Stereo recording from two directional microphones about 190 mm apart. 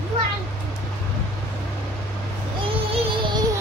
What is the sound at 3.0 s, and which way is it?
Music, 25° right (ahead or behind).